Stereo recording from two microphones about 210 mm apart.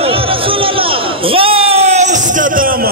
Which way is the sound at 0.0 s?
25° right (ahead or behind).